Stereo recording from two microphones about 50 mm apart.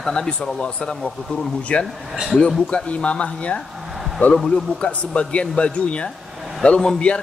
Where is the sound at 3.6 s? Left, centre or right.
Centre.